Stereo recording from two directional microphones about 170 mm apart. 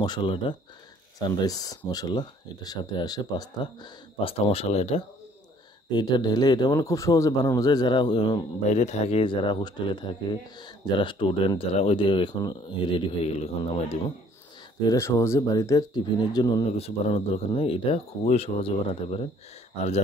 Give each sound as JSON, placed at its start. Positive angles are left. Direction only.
{"t": 0.0, "sound": "speech", "side_deg": 25}
{"t": 5.9, "sound": "speech", "side_deg": 25}
{"t": 8.6, "sound": "speech", "side_deg": 40}
{"t": 14.9, "sound": "speech", "side_deg": 15}
{"t": 16.7, "sound": "speech", "side_deg": 35}